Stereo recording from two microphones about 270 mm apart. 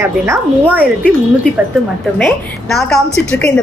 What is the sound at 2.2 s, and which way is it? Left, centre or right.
Speech, centre.